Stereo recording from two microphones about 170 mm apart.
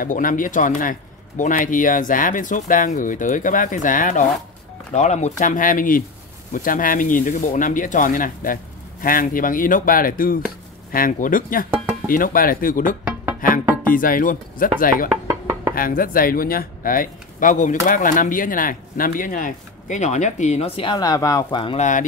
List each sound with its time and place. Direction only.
0.0 s speech: 50° left (ahead or behind)
15.2 s music: 20° right (ahead or behind)
15.7 s speech: 55° left (ahead or behind); by 21.7 s 25° left (ahead or behind)
21.7 s speech: 45° left (ahead or behind)